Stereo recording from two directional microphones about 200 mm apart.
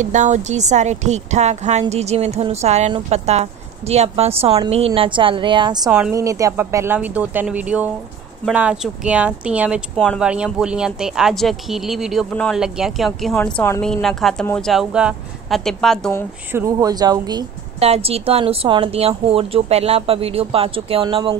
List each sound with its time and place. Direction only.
0.0 s a woman's voice: 35° right (ahead or behind); by 5.9 s 20° right (ahead or behind)
5.9 s a woman's voice: 5° right (ahead or behind)
6.1 s a woman's voice: 15° right (ahead or behind); by 16.3 s 5° left (ahead or behind)
16.5 s speech: 15° right (ahead or behind)